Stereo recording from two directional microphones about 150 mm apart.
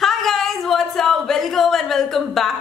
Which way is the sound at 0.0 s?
Centre (ahead or behind).